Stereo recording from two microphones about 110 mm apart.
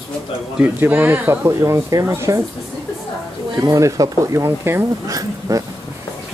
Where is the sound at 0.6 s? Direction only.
20° right (ahead or behind).